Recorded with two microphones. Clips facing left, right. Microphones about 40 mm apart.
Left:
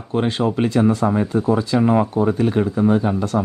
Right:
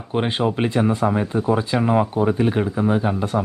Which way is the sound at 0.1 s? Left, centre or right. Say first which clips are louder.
Left 1 dB; right.